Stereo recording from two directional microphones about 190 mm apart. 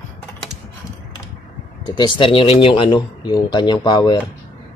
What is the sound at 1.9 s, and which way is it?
Speech, 25° left (ahead or behind).